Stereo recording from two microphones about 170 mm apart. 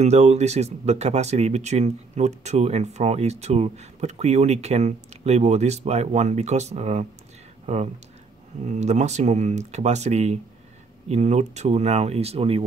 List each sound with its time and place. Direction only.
0.0 s speech: 40° right (ahead or behind)